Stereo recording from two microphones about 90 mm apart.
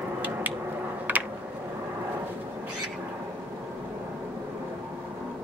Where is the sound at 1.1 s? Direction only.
20° right (ahead or behind).